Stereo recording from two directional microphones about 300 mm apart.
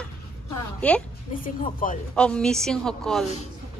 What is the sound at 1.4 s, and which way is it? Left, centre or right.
Speech, left.